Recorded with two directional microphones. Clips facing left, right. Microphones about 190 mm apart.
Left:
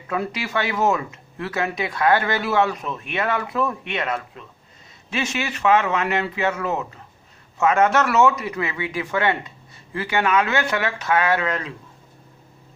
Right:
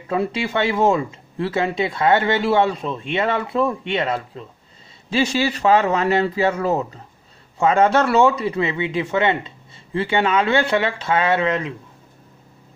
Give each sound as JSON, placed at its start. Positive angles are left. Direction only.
{"t": 0.1, "sound": "speech", "side_deg": -25}